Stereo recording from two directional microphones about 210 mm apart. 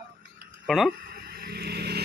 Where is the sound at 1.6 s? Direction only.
50° right (ahead or behind).